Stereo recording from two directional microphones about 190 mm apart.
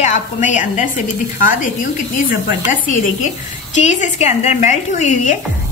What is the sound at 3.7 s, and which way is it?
A woman's voice, 40° left (ahead or behind).